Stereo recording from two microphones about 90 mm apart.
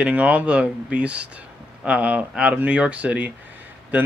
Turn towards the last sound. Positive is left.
turn(degrees=-20)  # may be behind; listen again after turning